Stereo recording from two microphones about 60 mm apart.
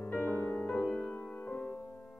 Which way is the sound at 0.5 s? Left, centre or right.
Centre.